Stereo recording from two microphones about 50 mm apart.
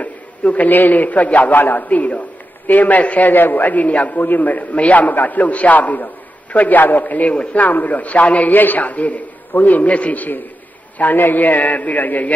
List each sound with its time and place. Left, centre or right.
0.0 s a man's voice: left